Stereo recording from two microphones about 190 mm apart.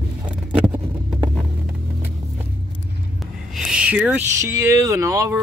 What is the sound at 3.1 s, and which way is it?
Speech, centre (ahead or behind).